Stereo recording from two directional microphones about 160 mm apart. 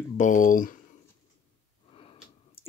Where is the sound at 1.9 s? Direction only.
35° left (ahead or behind).